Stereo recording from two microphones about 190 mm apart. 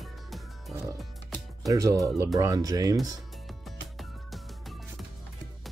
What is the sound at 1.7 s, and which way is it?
Speech, 20° right (ahead or behind).